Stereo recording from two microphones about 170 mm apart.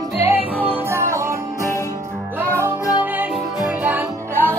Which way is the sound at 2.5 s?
10° right (ahead or behind).